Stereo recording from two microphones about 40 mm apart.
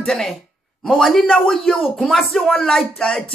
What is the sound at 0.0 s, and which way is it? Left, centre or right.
A woman's voice, centre.